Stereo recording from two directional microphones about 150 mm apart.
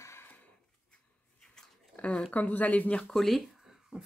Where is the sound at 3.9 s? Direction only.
5° right (ahead or behind).